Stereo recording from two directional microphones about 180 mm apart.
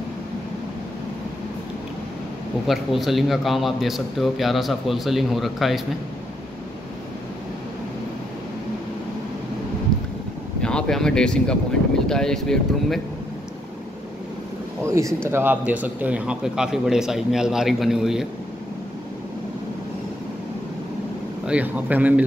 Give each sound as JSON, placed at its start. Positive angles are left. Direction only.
{"t": 2.6, "sound": "a man's voice", "side_deg": 0}
{"t": 10.6, "sound": "a sound", "side_deg": 5}
{"t": 12.1, "sound": "a man's voice", "side_deg": 5}
{"t": 14.8, "sound": "a man's voice", "side_deg": -15}
{"t": 21.5, "sound": "speech", "side_deg": -10}